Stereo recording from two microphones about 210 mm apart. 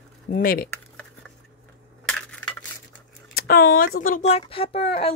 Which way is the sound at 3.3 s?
45° left (ahead or behind).